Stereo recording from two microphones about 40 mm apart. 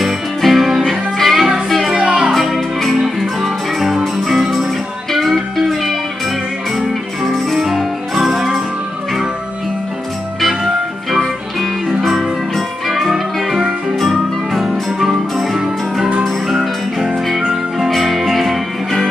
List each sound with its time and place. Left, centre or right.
0.0 s music: centre
2.0 s music: right
2.4 s music: centre
10.4 s music: centre
12.5 s music: centre
13.1 s music: centre
17.8 s music: centre